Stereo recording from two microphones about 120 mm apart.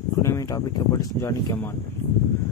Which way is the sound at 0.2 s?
25° left (ahead or behind).